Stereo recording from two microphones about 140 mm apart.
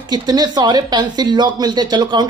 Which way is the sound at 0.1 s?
30° right (ahead or behind).